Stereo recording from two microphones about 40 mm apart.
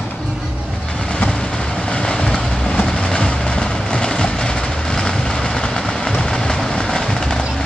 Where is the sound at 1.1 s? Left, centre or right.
Left.